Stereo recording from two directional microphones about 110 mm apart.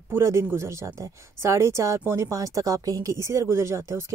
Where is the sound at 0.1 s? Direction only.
25° right (ahead or behind).